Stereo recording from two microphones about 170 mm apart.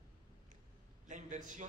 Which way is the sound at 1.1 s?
50° right (ahead or behind).